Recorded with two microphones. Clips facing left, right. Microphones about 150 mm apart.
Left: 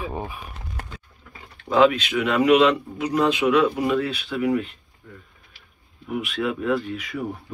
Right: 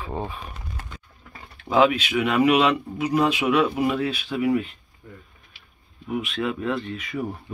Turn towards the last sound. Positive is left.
turn(degrees=0)  # may be behind; listen again after turning